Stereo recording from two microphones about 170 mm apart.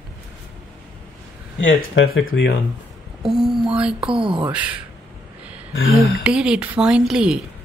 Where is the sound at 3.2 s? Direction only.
Centre (ahead or behind).